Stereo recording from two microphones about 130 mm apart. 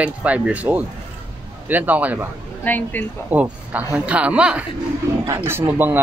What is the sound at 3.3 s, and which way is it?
Speech, 10° right (ahead or behind).